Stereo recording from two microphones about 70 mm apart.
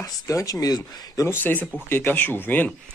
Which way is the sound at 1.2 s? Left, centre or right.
Left.